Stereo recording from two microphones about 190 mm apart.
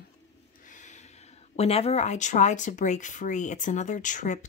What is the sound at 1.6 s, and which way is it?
Speech, 30° left (ahead or behind).